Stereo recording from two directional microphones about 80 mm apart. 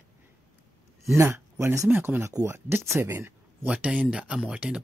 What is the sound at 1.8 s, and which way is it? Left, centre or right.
Speech, right.